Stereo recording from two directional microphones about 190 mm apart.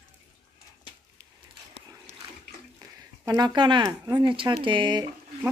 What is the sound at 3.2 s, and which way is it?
Speech, 20° right (ahead or behind).